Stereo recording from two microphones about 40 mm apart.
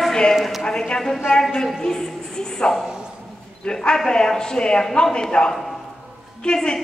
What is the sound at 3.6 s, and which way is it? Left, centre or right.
A woman's voice, centre.